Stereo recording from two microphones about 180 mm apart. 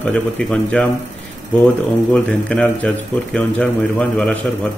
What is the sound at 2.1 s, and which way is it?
Speech, 5° left (ahead or behind).